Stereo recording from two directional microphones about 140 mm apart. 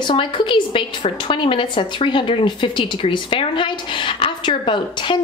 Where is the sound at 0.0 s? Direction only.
35° left (ahead or behind).